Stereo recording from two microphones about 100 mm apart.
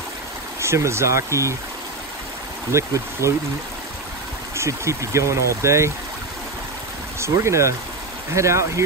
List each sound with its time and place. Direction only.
0.6 s speech: 30° right (ahead or behind)
2.7 s speech: 30° right (ahead or behind)
4.6 s speech: 30° right (ahead or behind)
7.2 s speech: 30° right (ahead or behind)